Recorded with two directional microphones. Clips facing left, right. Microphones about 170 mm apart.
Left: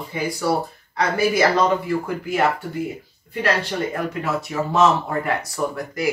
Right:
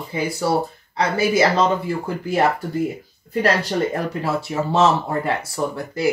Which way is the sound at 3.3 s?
40° right (ahead or behind).